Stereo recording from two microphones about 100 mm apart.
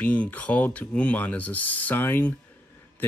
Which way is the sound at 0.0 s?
15° left (ahead or behind).